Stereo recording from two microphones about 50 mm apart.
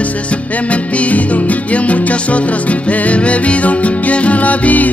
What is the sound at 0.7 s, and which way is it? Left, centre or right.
Music, left.